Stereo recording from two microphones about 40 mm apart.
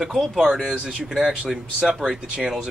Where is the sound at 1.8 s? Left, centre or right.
Centre.